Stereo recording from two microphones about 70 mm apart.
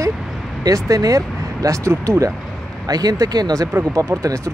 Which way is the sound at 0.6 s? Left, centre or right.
Right.